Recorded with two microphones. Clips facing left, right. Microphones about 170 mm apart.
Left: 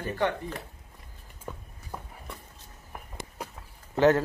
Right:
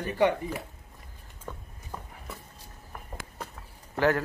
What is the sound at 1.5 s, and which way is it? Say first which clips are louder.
Walk: left 1 dB; 10° left (ahead or behind).